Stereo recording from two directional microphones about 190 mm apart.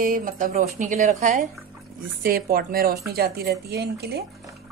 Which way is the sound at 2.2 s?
50° right (ahead or behind).